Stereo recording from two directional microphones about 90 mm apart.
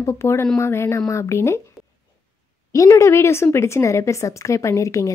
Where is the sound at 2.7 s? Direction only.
35° left (ahead or behind).